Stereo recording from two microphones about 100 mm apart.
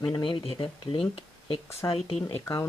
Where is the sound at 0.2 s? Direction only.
65° left (ahead or behind).